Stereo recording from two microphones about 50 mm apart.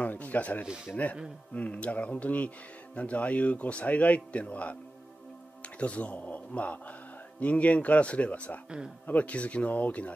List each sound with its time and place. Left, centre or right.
0.0 s a man's voice: left
5.8 s a man's voice: left
8.6 s speech: centre
9.0 s a man's voice: left